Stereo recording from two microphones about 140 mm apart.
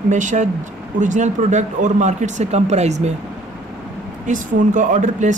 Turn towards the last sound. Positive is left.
turn(degrees=-60)  # may be behind; listen again after turning